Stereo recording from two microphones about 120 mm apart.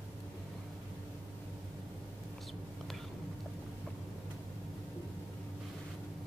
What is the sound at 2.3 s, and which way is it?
Whispering, centre (ahead or behind).